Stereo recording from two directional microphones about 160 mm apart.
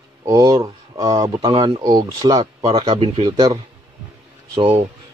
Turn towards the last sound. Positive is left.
turn(degrees=-30)  # may be behind; listen again after turning